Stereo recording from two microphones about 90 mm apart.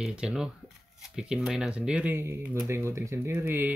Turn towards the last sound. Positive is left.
turn(degrees=-25)  # may be behind; listen again after turning